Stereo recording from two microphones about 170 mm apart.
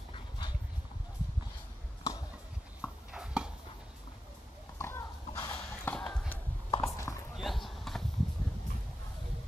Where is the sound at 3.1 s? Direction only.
5° right (ahead or behind).